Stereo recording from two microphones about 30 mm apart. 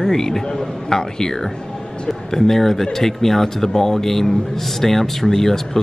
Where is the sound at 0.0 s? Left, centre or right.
Centre.